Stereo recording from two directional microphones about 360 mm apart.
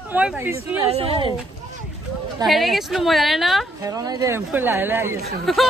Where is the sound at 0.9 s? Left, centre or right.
Centre.